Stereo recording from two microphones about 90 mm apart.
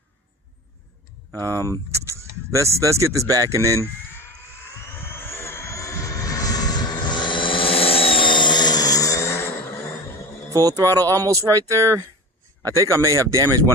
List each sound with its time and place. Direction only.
1.3 s speech: 40° right (ahead or behind)
5.0 s vehicle: 25° left (ahead or behind)
10.5 s speech: 40° right (ahead or behind)